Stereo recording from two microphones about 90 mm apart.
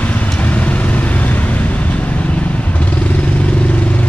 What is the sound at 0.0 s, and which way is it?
Vehicle, 15° left (ahead or behind).